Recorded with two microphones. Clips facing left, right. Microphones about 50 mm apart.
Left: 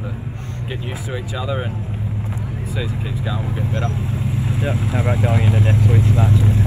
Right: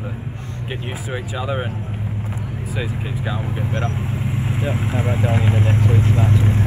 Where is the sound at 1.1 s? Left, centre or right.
Right.